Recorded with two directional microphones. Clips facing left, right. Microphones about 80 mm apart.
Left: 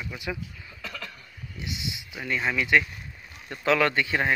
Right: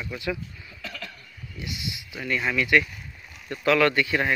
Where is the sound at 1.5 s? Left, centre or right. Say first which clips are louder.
Even; left.